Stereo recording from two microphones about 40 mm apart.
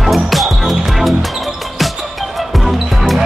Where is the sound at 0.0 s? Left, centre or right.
Centre.